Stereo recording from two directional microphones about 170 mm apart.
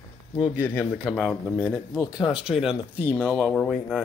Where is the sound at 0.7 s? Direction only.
10° left (ahead or behind).